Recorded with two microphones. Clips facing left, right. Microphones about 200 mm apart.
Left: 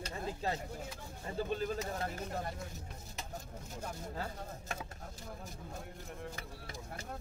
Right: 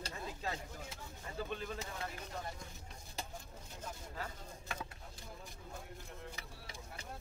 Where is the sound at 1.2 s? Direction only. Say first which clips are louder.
Left 6 dB; 35° left (ahead or behind).